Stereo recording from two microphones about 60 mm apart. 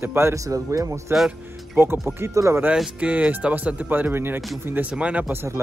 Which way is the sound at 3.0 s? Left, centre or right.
Right.